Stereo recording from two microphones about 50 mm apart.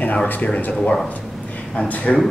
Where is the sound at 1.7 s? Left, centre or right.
Left.